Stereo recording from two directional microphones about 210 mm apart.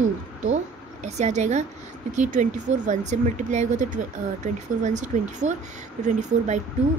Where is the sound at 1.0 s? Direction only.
35° right (ahead or behind).